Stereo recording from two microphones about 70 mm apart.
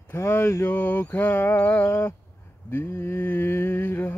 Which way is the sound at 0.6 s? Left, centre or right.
Left.